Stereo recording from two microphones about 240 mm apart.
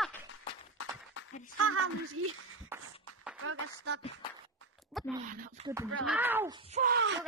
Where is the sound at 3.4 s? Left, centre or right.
Right.